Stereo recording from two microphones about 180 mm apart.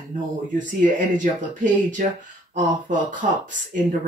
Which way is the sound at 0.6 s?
45° right (ahead or behind).